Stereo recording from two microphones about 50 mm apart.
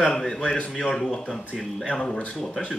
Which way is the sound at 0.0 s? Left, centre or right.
Centre.